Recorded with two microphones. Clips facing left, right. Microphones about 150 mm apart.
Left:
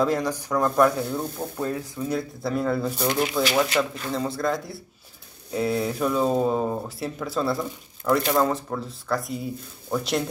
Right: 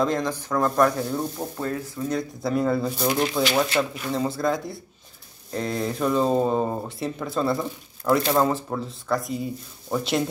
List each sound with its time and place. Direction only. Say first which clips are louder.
0.0 s speech: left 1 dB; 10° left (ahead or behind)
1.6 s speech: left 1 dB; 10° left (ahead or behind)
3.4 s speech: even; 25° right (ahead or behind)
3.9 s speech: right 2 dB; 10° right (ahead or behind)